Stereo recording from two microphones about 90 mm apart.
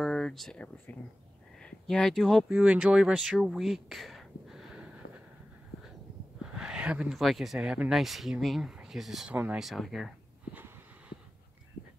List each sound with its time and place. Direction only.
0.0 s a sound: 5° left (ahead or behind)
1.6 s speech: 10° left (ahead or behind)
2.5 s speech: 15° right (ahead or behind)
6.4 s a sound: 10° right (ahead or behind)
7.2 s speech: centre (ahead or behind)
9.3 s speech: 20° right (ahead or behind)
9.6 s speech: centre (ahead or behind)